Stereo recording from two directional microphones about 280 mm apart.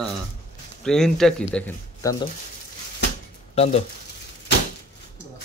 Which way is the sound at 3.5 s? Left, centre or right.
Left.